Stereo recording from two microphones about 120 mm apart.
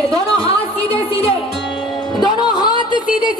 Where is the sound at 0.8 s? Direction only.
15° left (ahead or behind).